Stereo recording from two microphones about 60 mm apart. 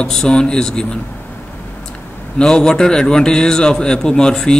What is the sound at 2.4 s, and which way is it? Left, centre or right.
Speech, centre.